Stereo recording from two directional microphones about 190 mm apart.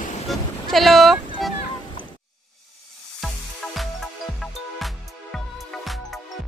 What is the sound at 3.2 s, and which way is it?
Music, centre (ahead or behind).